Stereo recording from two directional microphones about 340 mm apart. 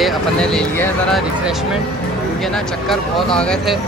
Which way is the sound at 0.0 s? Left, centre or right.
Centre.